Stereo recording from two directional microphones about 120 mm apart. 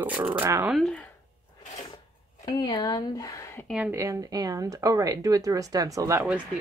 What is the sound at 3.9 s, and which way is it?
Speech, 25° right (ahead or behind).